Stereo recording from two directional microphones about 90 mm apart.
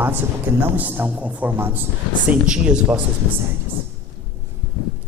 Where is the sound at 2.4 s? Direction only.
10° right (ahead or behind).